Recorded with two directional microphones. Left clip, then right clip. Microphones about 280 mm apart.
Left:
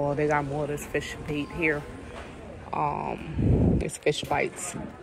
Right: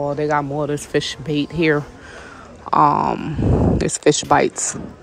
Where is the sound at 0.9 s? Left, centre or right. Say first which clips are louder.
Right 10 dB; right.